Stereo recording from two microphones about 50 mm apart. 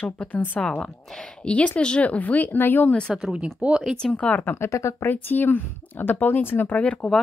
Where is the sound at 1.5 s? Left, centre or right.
Left.